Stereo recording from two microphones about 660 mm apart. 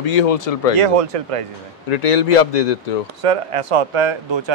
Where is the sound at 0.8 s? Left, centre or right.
Right.